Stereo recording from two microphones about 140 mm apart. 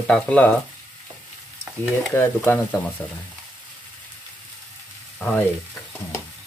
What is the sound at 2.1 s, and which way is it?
Stir, 15° left (ahead or behind).